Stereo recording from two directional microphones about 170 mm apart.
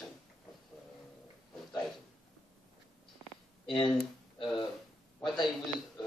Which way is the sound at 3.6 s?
30° left (ahead or behind).